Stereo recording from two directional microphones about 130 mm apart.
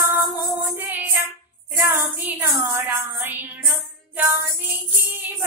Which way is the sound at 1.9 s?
15° right (ahead or behind).